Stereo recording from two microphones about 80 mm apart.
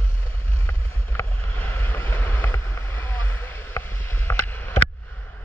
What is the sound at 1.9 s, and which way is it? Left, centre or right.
Boat, left.